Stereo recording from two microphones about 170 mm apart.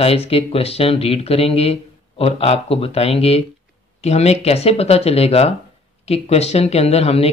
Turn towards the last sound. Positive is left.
turn(degrees=35)  # may be behind; listen again after turning